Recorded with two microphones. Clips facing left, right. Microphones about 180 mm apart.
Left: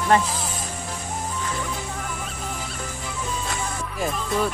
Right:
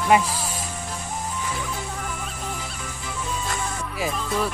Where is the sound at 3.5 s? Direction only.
Centre (ahead or behind).